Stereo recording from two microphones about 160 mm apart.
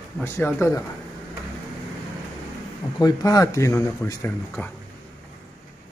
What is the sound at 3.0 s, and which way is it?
Speech, 20° left (ahead or behind).